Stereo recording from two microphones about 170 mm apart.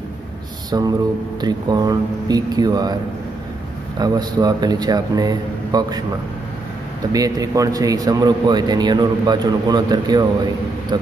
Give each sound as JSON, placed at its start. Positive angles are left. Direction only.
{"t": 0.7, "sound": "a man's voice", "side_deg": -25}
{"t": 4.0, "sound": "a man's voice", "side_deg": -25}
{"t": 7.1, "sound": "a man's voice", "side_deg": -20}